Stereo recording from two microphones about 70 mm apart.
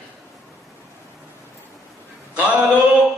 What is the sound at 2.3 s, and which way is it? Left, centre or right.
Speech, right.